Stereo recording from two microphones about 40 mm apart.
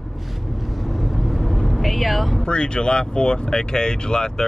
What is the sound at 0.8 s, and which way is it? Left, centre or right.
Vehicle, centre.